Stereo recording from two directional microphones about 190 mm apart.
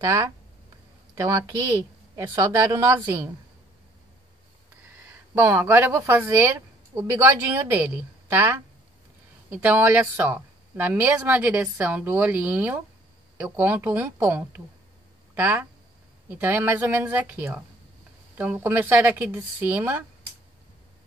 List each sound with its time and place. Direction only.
0.0 s speech: 15° right (ahead or behind)
5.4 s speech: 10° right (ahead or behind)
9.5 s speech: 10° right (ahead or behind)